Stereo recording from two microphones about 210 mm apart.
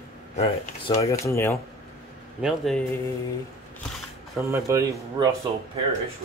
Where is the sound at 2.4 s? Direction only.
Centre (ahead or behind).